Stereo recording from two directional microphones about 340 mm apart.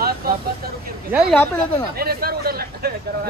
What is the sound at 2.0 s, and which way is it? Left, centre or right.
Speech, right.